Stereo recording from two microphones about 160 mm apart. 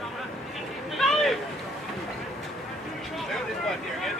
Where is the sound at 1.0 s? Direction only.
Centre (ahead or behind).